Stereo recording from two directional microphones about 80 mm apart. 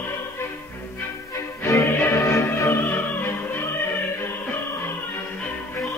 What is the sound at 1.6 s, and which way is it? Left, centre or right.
Music, left.